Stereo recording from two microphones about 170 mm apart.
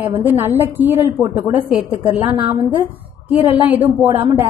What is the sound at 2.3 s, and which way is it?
Speech, 30° right (ahead or behind).